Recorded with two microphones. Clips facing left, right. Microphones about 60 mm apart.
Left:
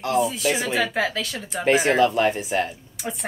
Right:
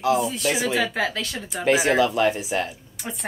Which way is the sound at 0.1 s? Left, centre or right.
Centre.